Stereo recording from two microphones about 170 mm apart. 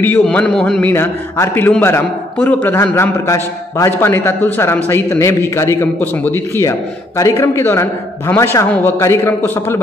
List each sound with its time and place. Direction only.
0.0 s a man's voice: 10° left (ahead or behind)